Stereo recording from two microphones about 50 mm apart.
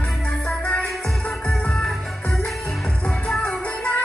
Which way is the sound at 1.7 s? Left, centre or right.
Centre.